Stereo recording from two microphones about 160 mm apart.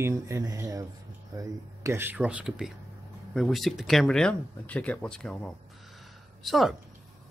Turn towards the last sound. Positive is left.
turn(degrees=0)  # may be behind; listen again after turning